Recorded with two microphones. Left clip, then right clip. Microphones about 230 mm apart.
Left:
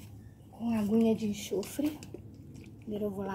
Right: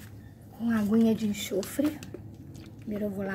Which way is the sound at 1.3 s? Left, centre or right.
Right.